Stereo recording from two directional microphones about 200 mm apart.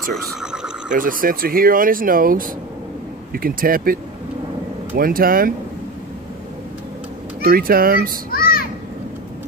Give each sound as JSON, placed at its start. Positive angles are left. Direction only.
{"t": 0.9, "sound": "speech", "side_deg": -45}
{"t": 7.4, "sound": "speech", "side_deg": -45}
{"t": 8.3, "sound": "children playing", "side_deg": 50}